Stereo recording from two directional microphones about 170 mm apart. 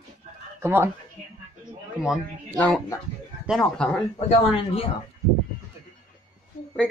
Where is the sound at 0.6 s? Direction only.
15° right (ahead or behind).